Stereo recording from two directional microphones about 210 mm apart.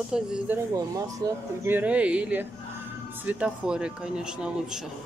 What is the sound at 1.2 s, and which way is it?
Speech, 20° right (ahead or behind).